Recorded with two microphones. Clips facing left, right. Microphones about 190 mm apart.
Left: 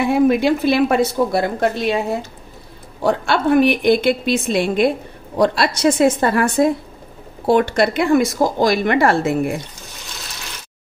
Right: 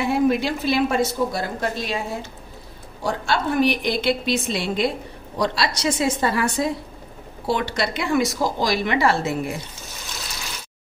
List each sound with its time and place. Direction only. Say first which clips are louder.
0.1 s a woman's voice: left 5 dB; 60° left (ahead or behind)
3.0 s a woman's voice: left 6 dB; 60° left (ahead or behind)